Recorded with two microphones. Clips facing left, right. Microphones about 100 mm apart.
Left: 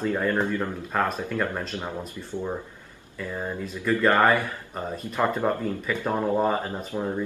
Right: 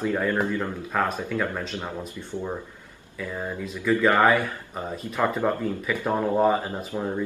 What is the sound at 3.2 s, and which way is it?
Speech, centre (ahead or behind).